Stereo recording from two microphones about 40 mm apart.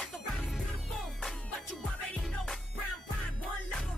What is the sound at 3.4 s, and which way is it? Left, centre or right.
Music, left.